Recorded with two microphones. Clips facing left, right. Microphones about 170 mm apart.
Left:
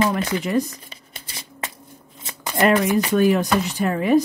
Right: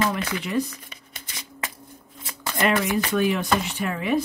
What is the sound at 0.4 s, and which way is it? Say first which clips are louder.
Speech: left 3 dB; 45° left (ahead or behind).